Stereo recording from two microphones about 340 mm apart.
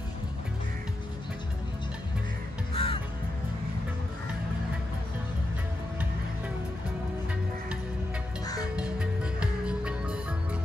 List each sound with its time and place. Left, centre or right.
2.7 s crow: centre
8.7 s music: centre